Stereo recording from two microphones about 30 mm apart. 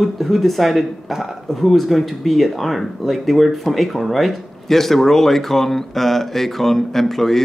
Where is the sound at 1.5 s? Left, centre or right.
Centre.